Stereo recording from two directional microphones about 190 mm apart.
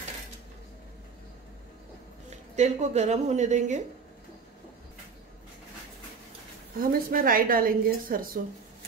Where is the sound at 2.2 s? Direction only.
35° right (ahead or behind).